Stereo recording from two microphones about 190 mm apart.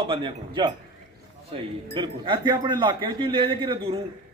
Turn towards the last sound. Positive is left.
turn(degrees=-30)  # may be behind; listen again after turning